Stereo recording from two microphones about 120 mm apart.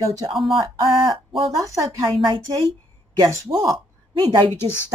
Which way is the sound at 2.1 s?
45° right (ahead or behind).